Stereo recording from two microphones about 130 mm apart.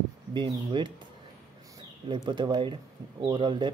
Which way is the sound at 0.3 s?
35° right (ahead or behind).